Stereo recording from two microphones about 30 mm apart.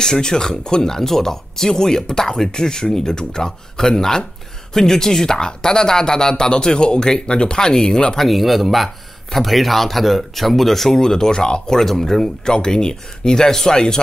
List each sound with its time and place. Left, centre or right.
0.0 s speech: left
0.9 s speech: centre
8.2 s speech: centre
11.0 s speech: left
11.8 s speech: centre
12.4 s speech: left